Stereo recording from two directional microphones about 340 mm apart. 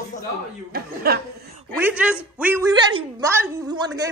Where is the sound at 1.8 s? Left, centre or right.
Centre.